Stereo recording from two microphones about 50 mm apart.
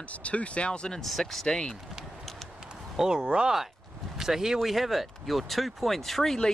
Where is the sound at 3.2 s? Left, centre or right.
Right.